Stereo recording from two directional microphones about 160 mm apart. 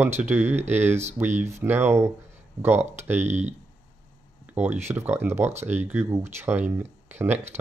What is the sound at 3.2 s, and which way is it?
Speech, 45° right (ahead or behind).